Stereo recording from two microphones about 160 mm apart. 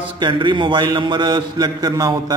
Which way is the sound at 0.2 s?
30° right (ahead or behind).